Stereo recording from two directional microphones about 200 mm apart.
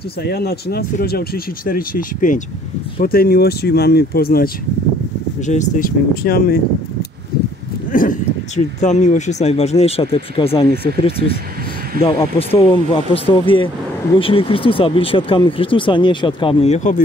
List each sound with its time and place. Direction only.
0.2 s speech: 50° left (ahead or behind)
5.5 s speech: 40° left (ahead or behind)
7.9 s a sound: 40° left (ahead or behind)
8.8 s speech: 35° left (ahead or behind)
12.4 s speech: 30° left (ahead or behind)